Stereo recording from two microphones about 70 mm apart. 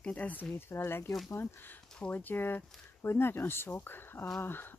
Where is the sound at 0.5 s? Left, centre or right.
Left.